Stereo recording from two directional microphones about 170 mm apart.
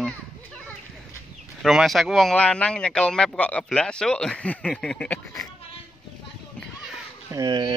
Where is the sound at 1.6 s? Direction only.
Centre (ahead or behind).